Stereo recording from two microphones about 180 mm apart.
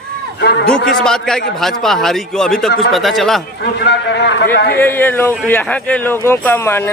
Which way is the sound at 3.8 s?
70° left (ahead or behind).